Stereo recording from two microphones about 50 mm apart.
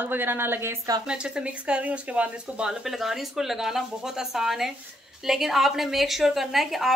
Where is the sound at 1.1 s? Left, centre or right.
Centre.